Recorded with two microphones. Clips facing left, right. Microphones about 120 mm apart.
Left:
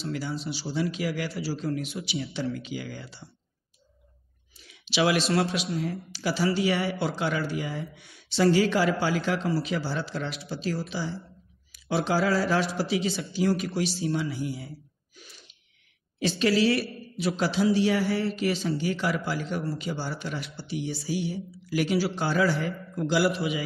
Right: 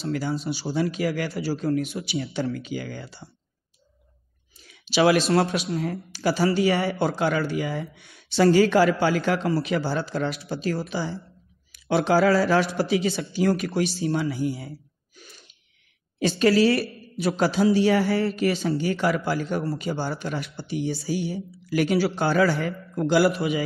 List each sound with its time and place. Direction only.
0.1 s speech: 50° right (ahead or behind)
4.6 s a sound: 45° right (ahead or behind)
5.7 s a man's voice: 55° right (ahead or behind); by 7.8 s 75° right (ahead or behind)
8.3 s a man's voice: 60° right (ahead or behind)
10.0 s speech: 45° right (ahead or behind)
10.4 s a man's voice: 55° right (ahead or behind)
15.1 s gasp: 50° right (ahead or behind)
16.2 s a man's voice: 50° right (ahead or behind); by 22.7 s 70° right (ahead or behind)
22.9 s speech: 55° right (ahead or behind)